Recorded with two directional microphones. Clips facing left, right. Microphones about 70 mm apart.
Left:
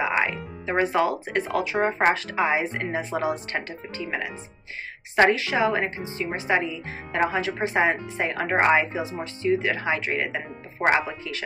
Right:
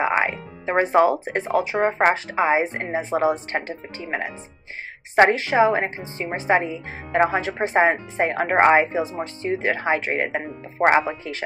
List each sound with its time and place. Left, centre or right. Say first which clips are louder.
0.0 s a woman's voice: right 3 dB; right